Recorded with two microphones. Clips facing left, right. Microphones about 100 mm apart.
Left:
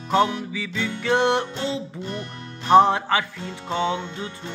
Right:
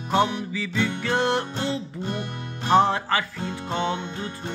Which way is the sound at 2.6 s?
20° left (ahead or behind).